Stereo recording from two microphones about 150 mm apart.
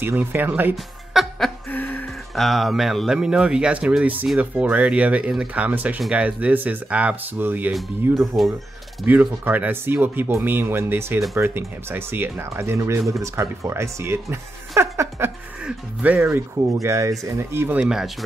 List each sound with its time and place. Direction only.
0.0 s speech: 15° right (ahead or behind)
1.1 s laughter: centre (ahead or behind)
1.7 s a sound: 10° left (ahead or behind)
2.3 s speech: centre (ahead or behind)